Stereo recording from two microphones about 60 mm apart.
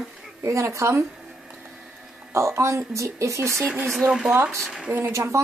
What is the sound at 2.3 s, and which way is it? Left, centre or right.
A woman's voice, right.